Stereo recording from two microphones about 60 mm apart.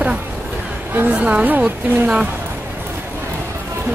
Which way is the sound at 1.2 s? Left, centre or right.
Right.